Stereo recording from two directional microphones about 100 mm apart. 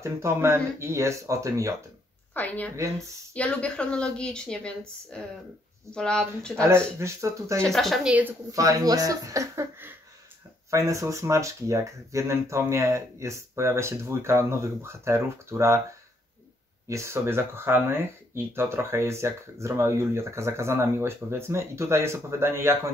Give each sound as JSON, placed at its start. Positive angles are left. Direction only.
{"t": 0.0, "sound": "speech", "side_deg": -25}
{"t": 2.3, "sound": "a woman's voice", "side_deg": 15}
{"t": 6.6, "sound": "speech", "side_deg": -30}
{"t": 7.6, "sound": "speech", "side_deg": 0}
{"t": 8.5, "sound": "speech", "side_deg": -35}
{"t": 16.8, "sound": "speech", "side_deg": -30}